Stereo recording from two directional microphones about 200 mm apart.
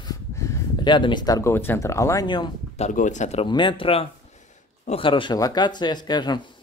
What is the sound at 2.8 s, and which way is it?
Speech, 35° left (ahead or behind).